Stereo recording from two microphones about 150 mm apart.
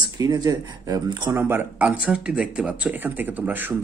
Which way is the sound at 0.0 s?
30° right (ahead or behind).